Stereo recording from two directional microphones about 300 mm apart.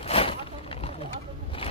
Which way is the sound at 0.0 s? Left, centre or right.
Centre.